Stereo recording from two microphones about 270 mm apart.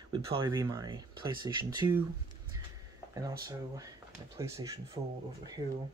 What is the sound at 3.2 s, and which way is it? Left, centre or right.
Speech, centre.